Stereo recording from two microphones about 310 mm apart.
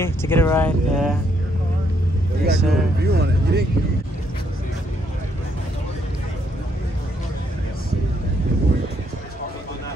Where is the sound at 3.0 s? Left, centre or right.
Right.